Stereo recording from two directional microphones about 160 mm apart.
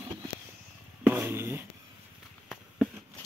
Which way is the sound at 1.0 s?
15° right (ahead or behind).